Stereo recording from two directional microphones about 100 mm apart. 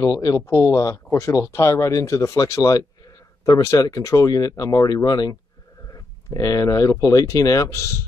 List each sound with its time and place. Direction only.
0.0 s speech: 35° left (ahead or behind)